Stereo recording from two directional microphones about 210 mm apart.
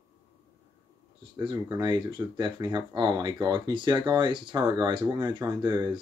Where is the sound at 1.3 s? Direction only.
20° right (ahead or behind).